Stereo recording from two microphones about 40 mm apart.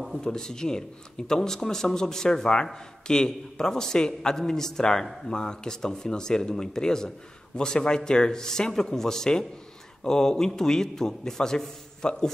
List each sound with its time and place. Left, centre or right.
0.2 s speech: centre
5.0 s speech: centre
5.3 s speech: centre